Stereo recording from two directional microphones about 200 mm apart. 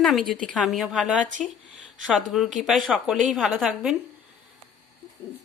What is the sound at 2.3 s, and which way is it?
Speech, centre (ahead or behind).